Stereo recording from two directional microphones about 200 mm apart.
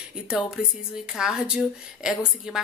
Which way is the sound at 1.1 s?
5° right (ahead or behind).